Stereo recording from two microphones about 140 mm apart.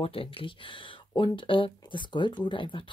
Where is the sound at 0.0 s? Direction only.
40° left (ahead or behind).